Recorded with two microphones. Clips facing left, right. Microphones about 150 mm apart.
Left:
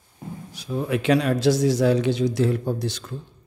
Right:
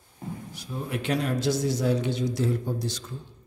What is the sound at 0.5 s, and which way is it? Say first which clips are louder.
A man's voice: left 10 dB; 90° left.